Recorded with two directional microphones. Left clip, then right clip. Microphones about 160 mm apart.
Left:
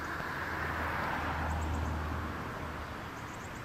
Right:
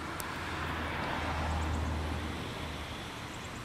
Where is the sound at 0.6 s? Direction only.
45° right (ahead or behind).